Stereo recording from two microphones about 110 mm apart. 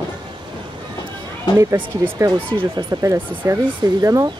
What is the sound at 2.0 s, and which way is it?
Speech, 30° right (ahead or behind).